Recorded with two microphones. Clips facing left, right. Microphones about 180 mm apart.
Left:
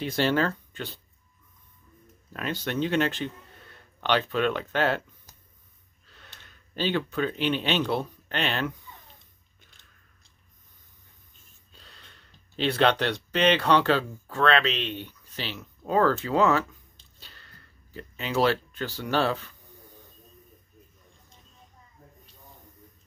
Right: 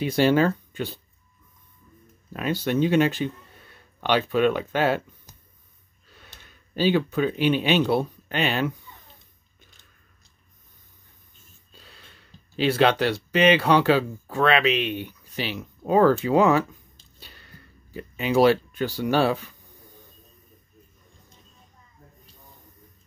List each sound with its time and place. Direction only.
0.0 s speech: 10° right (ahead or behind)
2.3 s speech: 10° right (ahead or behind)
6.0 s speech: 10° right (ahead or behind)
11.7 s speech: 5° right (ahead or behind)
17.2 s a sound: 10° right (ahead or behind)